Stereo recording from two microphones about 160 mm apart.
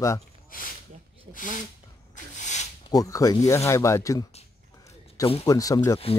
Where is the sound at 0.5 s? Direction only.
60° left (ahead or behind).